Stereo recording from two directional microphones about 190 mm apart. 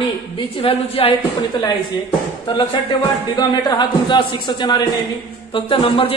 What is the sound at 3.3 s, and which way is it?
A man's voice, 25° left (ahead or behind).